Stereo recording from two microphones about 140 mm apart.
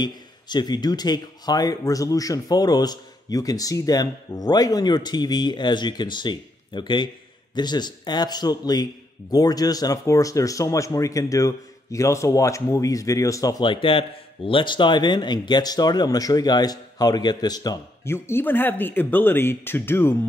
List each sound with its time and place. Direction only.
0.0 s a man's voice: 30° left (ahead or behind); by 20.2 s 15° left (ahead or behind)